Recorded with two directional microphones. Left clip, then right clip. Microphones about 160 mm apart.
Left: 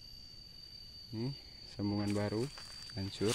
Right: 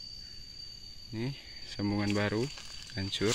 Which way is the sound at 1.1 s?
5° right (ahead or behind).